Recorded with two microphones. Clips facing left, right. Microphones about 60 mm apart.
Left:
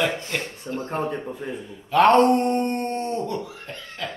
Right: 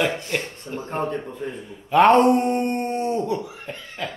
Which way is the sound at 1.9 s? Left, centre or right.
Centre.